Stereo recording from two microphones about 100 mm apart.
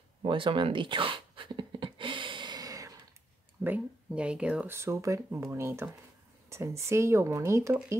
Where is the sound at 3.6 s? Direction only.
15° right (ahead or behind).